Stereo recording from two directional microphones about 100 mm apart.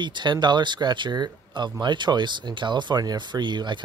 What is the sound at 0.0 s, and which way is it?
Speech, 50° right (ahead or behind).